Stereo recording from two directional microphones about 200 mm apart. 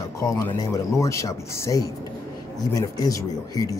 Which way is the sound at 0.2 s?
15° left (ahead or behind).